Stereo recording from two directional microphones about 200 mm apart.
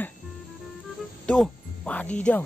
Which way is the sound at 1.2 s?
5° left (ahead or behind).